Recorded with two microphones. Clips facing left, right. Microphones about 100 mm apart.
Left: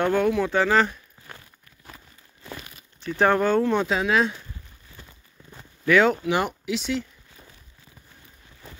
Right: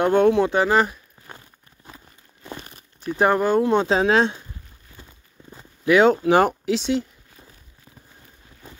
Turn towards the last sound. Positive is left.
turn(degrees=-25)  # may be behind; listen again after turning